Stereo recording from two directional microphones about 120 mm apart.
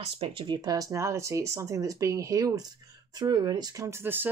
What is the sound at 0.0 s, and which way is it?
Speech, 50° right (ahead or behind).